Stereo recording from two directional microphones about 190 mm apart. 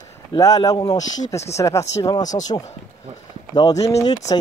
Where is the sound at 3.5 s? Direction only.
20° left (ahead or behind).